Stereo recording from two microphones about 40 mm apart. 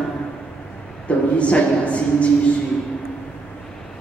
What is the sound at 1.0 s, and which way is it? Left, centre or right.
A man's voice, left.